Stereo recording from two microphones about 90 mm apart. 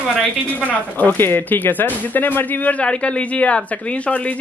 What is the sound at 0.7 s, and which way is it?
Speech, 20° left (ahead or behind).